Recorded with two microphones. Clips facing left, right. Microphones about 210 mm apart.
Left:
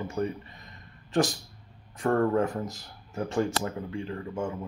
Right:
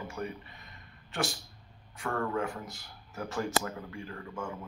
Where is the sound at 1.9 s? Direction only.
40° left (ahead or behind).